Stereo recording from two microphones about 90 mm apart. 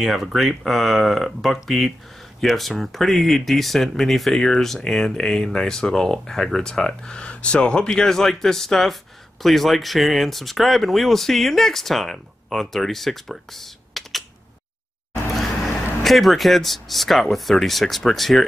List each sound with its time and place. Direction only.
0.0 s speech: centre (ahead or behind)
16.0 s speech: centre (ahead or behind)